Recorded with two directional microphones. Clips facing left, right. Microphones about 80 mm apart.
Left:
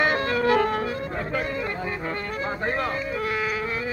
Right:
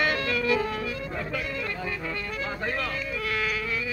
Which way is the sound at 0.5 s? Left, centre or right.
Left.